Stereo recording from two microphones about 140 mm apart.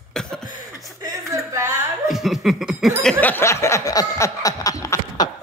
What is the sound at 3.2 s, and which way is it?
Snicker, 15° left (ahead or behind).